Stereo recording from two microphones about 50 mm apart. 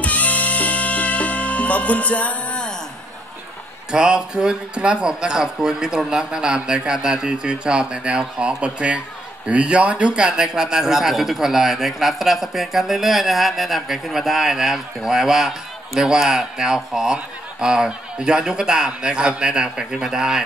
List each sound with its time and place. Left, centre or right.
0.0 s music: left
3.9 s a man's voice: centre